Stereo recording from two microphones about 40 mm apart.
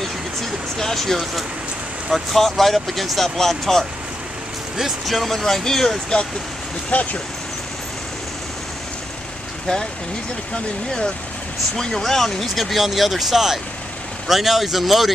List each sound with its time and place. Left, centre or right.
0.7 s speech: centre
4.7 s speech: centre
6.9 s speech: left
11.7 s speech: centre